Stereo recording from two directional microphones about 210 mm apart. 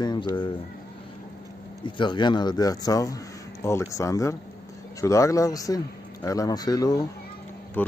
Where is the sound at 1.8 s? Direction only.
20° left (ahead or behind).